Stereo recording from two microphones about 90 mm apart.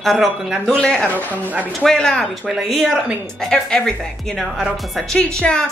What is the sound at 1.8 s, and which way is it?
A woman's voice, 5° left (ahead or behind).